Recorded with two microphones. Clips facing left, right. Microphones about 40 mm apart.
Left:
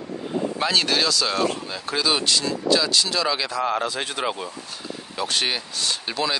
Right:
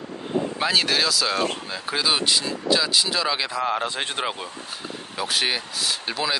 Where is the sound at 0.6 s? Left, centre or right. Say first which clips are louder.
Even; centre.